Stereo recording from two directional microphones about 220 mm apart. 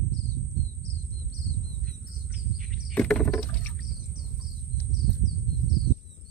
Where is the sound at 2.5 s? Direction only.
5° left (ahead or behind).